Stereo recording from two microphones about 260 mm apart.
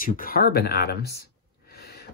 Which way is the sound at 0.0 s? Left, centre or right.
Left.